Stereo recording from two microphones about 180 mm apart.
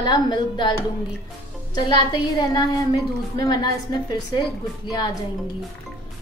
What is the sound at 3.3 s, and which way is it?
A woman's voice, 20° left (ahead or behind).